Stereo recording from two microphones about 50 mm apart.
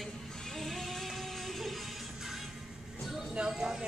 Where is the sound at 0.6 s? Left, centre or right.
Centre.